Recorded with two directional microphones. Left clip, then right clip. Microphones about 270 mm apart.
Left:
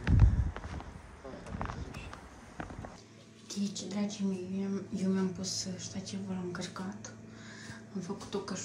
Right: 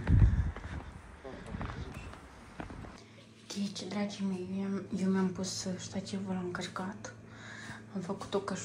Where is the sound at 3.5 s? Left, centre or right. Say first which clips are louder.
Even; centre.